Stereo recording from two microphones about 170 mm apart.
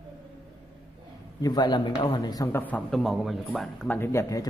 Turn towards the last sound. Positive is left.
turn(degrees=20)  # may be behind; listen again after turning